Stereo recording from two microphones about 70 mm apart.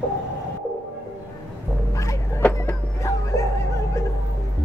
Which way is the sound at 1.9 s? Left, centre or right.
Left.